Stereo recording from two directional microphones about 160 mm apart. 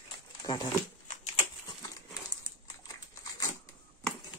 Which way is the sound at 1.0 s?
40° left (ahead or behind).